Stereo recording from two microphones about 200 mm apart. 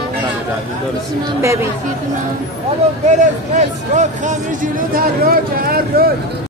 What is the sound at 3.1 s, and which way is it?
Speech, 40° right (ahead or behind).